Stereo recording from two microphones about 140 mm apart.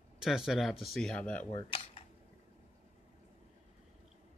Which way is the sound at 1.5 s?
40° left (ahead or behind).